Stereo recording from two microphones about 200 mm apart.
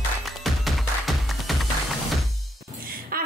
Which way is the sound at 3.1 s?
50° right (ahead or behind).